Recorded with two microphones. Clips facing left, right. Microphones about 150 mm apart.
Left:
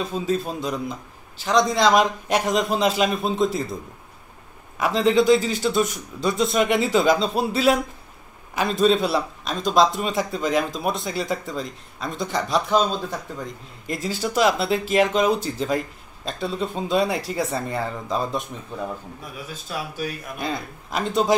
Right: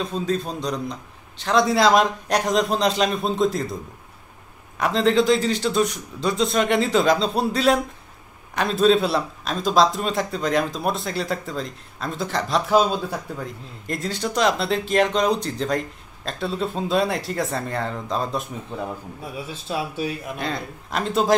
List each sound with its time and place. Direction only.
0.0 s a man's voice: 5° left (ahead or behind)
4.7 s a man's voice: centre (ahead or behind)
13.8 s a man's voice: 5° left (ahead or behind)
19.3 s a man's voice: 25° right (ahead or behind)
20.3 s a man's voice: centre (ahead or behind)